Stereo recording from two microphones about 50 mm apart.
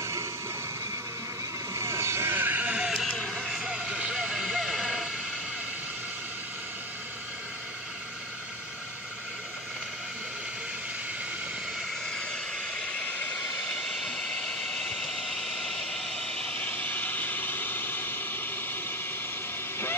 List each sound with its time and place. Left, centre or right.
0.0 s train: right
1.7 s vehicle: right
2.3 s sheep: right
2.7 s music: centre
3.1 s music: centre
3.5 s vehicle: centre
12.1 s vehicle: centre
16.5 s vehicle: left